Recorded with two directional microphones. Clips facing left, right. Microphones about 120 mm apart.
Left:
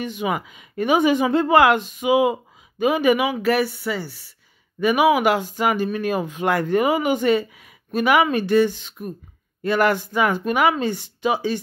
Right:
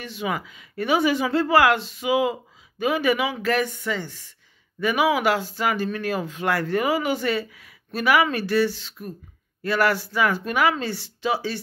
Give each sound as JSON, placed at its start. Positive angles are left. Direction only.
{"t": 0.0, "sound": "a woman's voice", "side_deg": 15}